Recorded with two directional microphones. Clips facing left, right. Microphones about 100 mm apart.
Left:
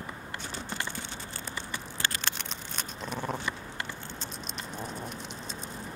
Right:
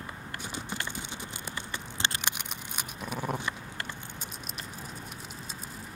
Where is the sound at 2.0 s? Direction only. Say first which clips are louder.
Right 1 dB; 20° right (ahead or behind).